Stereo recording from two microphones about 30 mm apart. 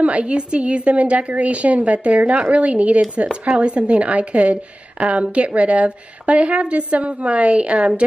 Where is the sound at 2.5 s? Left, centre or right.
Right.